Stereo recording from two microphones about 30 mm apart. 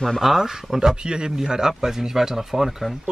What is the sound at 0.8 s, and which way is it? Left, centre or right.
Speech, right.